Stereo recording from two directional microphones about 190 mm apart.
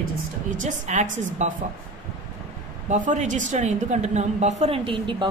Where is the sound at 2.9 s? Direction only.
40° right (ahead or behind).